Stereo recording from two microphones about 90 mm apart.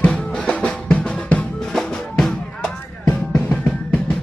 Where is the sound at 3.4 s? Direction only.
15° left (ahead or behind).